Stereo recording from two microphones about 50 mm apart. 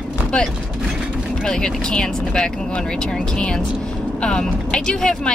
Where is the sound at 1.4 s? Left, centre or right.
Centre.